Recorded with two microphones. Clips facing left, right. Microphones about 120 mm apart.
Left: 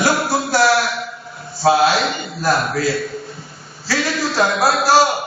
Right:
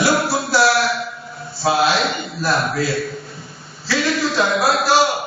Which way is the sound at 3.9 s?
40° left (ahead or behind).